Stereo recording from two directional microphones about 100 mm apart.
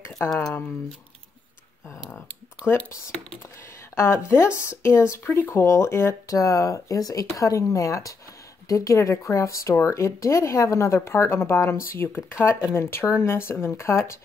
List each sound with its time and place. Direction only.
0.3 s speech: 5° left (ahead or behind)
2.0 s a sound: 20° left (ahead or behind)
3.9 s speech: 25° left (ahead or behind)